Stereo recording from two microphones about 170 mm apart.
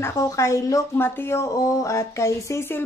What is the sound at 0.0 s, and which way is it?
Speech, 15° left (ahead or behind).